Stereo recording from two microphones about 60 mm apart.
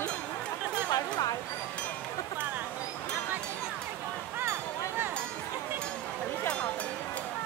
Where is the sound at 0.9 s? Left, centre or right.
Left.